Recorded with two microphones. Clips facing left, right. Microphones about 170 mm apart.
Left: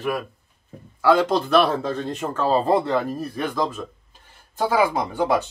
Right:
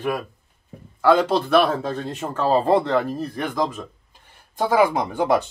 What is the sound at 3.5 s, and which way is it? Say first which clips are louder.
Speech: right 1 dB; 15° right (ahead or behind).